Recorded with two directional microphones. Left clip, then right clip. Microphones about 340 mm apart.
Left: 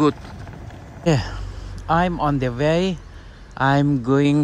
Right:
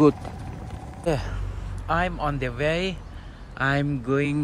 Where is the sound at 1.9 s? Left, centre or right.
Centre.